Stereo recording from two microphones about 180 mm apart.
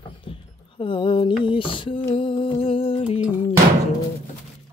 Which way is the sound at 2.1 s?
30° left (ahead or behind).